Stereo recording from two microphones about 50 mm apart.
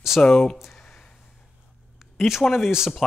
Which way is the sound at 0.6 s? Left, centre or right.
Centre.